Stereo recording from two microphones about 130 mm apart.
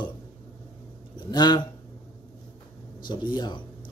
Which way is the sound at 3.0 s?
35° left (ahead or behind).